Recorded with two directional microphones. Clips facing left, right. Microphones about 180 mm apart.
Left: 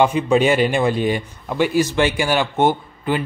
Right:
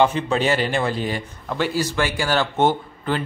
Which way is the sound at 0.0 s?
15° left (ahead or behind).